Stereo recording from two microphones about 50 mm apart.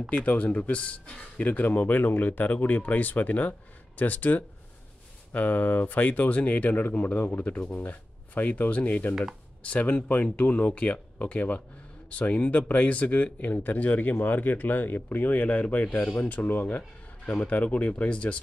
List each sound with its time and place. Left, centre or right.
0.1 s speech: left